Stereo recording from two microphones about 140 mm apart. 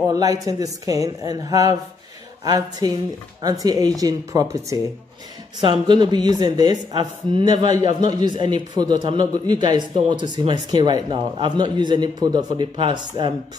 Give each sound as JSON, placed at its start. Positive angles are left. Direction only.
{"t": 0.1, "sound": "a woman's voice", "side_deg": -25}
{"t": 5.6, "sound": "a woman's voice", "side_deg": -35}